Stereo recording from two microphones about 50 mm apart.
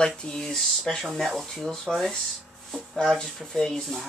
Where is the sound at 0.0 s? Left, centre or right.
Centre.